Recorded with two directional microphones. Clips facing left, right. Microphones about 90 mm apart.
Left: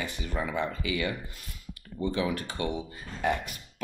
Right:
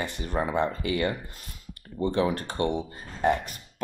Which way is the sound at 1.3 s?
40° right (ahead or behind).